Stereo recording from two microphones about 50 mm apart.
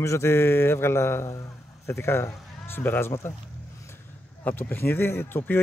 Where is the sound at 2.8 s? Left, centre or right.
Left.